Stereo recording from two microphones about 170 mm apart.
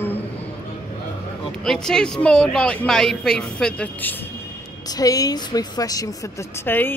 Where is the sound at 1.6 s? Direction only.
5° left (ahead or behind).